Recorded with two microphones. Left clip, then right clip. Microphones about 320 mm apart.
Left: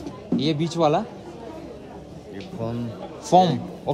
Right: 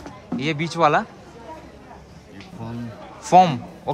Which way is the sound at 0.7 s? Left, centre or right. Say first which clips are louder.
Right 3 dB; centre.